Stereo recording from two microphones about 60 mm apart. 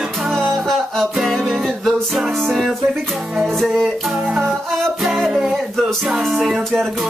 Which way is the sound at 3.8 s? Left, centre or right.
Centre.